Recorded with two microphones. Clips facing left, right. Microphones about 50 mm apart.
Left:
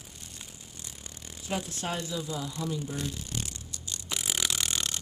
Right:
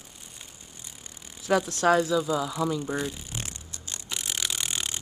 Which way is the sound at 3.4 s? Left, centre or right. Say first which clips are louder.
Right 1 dB; right.